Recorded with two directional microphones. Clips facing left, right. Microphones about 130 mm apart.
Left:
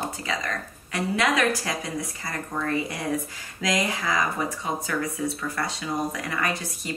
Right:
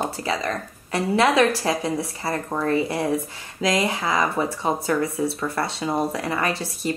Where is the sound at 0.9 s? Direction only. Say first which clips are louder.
Right 5 dB; 30° right (ahead or behind).